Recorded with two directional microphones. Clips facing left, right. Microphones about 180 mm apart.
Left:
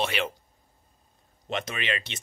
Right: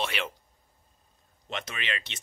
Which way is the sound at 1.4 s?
45° left (ahead or behind).